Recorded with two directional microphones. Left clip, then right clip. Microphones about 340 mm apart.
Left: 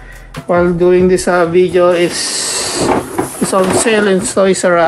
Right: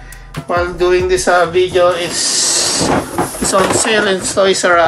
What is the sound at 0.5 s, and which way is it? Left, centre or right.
Speech, centre.